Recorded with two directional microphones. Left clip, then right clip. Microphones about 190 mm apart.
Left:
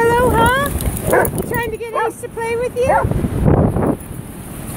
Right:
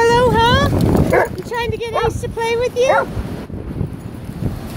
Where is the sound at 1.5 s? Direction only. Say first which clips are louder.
Right 2 dB; 15° right (ahead or behind).